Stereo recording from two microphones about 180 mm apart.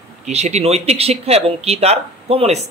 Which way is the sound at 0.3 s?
35° right (ahead or behind).